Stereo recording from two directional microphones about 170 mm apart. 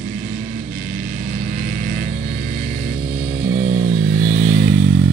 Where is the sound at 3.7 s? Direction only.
50° right (ahead or behind).